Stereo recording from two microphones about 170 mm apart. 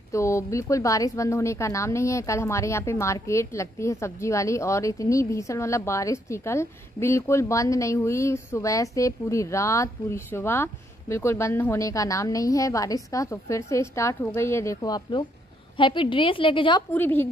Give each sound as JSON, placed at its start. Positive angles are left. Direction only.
{"t": 0.1, "sound": "a woman's voice", "side_deg": 15}
{"t": 16.9, "sound": "a woman's voice", "side_deg": 10}